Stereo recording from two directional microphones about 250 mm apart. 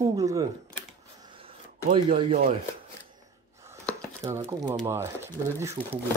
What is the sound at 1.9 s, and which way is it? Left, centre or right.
Speech, right.